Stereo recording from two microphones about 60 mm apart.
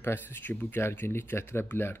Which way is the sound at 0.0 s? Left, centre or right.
Left.